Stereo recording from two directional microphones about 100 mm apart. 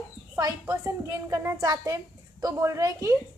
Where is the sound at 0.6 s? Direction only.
30° right (ahead or behind).